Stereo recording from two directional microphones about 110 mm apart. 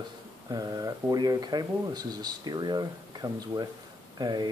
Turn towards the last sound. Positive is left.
turn(degrees=-40)  # may be behind; listen again after turning